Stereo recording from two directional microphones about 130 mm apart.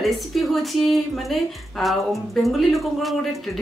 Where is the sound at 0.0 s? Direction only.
Centre (ahead or behind).